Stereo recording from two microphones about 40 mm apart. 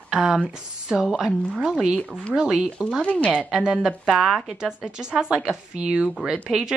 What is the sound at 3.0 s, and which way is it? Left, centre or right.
Speech, left.